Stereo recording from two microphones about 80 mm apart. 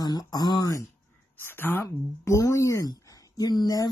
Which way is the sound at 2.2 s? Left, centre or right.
Left.